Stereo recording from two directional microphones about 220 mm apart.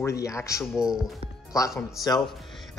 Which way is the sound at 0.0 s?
15° left (ahead or behind).